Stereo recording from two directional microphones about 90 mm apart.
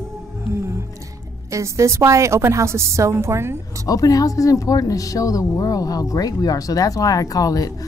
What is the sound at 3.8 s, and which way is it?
A woman's voice, 40° left (ahead or behind).